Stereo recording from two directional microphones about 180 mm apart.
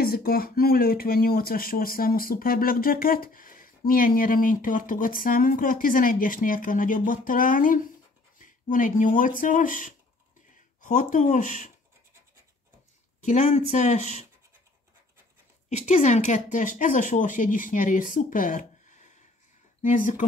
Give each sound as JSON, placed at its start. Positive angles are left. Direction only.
{"t": 0.0, "sound": "speech", "side_deg": 55}
{"t": 13.2, "sound": "speech", "side_deg": 40}
{"t": 15.8, "sound": "speech", "side_deg": 40}